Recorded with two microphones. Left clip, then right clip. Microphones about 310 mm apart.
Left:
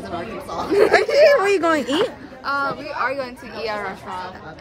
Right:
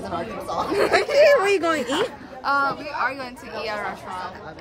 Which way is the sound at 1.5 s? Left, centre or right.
Centre.